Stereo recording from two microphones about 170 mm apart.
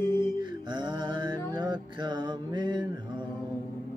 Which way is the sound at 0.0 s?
15° left (ahead or behind).